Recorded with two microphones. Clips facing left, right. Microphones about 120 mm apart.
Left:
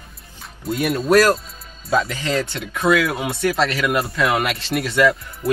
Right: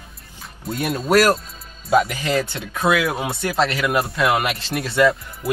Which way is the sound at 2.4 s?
25° right (ahead or behind).